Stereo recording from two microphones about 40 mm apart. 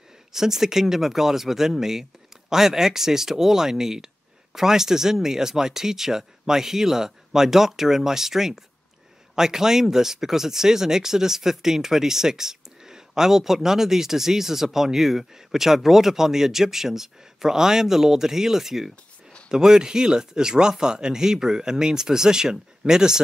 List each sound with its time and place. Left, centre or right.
0.3 s speech: centre